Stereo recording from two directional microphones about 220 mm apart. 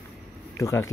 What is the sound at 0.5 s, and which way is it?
Speech, 15° left (ahead or behind).